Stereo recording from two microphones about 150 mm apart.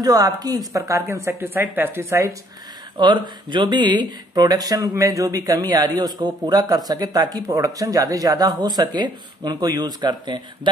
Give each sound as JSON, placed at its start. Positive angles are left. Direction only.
{"t": 0.0, "sound": "speech", "side_deg": -25}
{"t": 3.0, "sound": "speech", "side_deg": -30}